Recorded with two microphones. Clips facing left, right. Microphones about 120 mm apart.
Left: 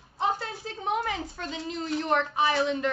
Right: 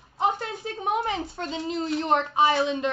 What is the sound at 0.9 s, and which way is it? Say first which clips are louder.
A woman's voice: right 2 dB; 20° right (ahead or behind).